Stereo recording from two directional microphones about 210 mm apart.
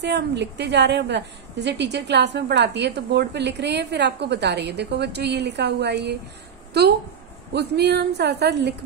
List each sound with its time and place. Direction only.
0.0 s a woman's voice: 55° right (ahead or behind)